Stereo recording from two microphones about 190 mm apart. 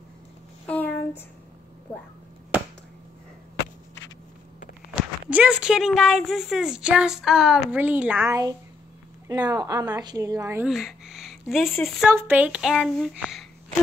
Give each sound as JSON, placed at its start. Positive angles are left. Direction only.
{"t": 0.7, "sound": "a sound", "side_deg": 10}
{"t": 5.3, "sound": "speech", "side_deg": -5}
{"t": 10.7, "sound": "speech", "side_deg": 0}
{"t": 12.1, "sound": "speech", "side_deg": -10}